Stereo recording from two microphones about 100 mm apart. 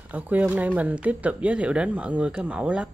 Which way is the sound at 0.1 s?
15° right (ahead or behind).